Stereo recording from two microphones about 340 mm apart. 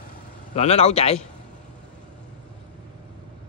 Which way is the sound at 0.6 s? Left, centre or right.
Centre.